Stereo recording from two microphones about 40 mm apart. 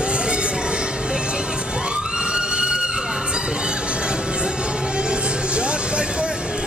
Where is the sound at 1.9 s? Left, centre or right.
Right.